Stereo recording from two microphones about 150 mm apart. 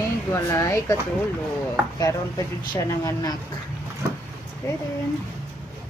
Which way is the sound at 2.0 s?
25° left (ahead or behind).